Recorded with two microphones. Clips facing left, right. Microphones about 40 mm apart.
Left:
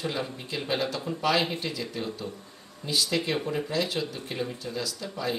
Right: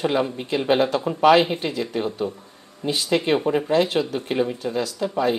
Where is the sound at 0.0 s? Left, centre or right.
Right.